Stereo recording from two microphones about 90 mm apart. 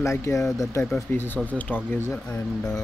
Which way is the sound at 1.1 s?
25° left (ahead or behind).